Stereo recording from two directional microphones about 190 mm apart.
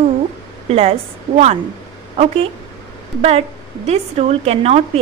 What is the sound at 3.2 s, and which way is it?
Speech, 30° right (ahead or behind).